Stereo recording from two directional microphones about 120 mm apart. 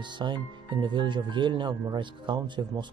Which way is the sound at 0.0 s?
40° right (ahead or behind).